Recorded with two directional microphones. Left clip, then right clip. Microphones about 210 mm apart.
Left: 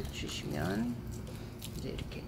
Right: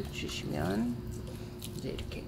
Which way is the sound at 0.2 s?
5° right (ahead or behind).